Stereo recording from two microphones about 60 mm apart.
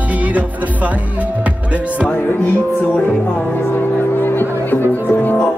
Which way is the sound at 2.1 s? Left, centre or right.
Left.